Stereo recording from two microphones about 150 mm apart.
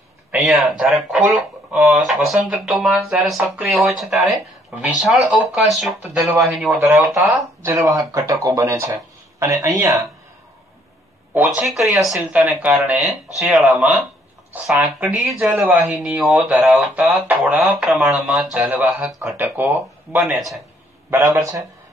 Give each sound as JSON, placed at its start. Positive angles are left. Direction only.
{"t": 0.3, "sound": "speech", "side_deg": -5}
{"t": 6.8, "sound": "speech", "side_deg": -15}
{"t": 11.3, "sound": "a man's voice", "side_deg": -10}